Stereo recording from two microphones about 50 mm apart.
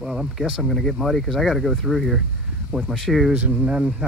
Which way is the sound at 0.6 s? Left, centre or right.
Centre.